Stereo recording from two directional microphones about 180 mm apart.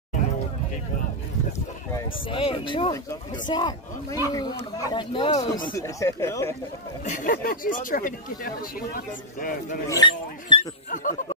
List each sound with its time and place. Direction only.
2.2 s speech: 30° left (ahead or behind)
7.1 s speech: 50° left (ahead or behind)
9.8 s speech: 25° left (ahead or behind)
10.6 s speech: 45° left (ahead or behind)